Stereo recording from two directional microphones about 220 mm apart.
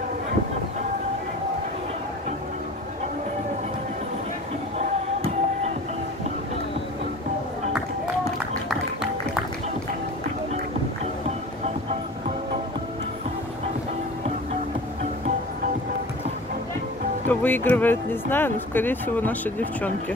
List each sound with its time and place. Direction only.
4.7 s music: 30° right (ahead or behind)
8.6 s music: 5° right (ahead or behind)
17.3 s speech: 10° left (ahead or behind)